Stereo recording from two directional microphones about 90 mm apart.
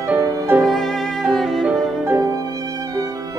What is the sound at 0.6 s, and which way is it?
Violin, centre (ahead or behind).